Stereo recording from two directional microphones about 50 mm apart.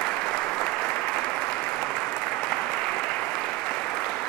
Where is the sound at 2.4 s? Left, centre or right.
Centre.